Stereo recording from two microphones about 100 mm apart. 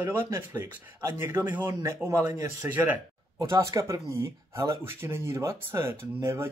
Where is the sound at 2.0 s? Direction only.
35° right (ahead or behind).